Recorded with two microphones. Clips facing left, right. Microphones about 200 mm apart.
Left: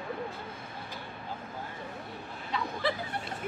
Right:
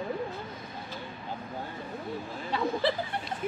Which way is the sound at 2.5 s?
30° right (ahead or behind).